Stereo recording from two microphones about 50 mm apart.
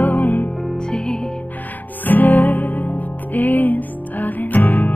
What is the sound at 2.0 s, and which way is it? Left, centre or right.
Music, left.